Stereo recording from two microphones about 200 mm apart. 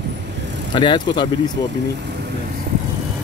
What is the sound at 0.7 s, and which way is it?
Speech, 25° left (ahead or behind).